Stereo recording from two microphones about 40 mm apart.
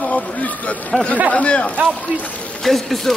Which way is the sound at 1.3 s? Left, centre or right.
Left.